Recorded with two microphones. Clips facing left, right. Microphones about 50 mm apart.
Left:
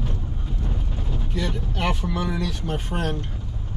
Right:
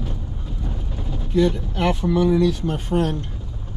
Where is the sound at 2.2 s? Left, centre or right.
Centre.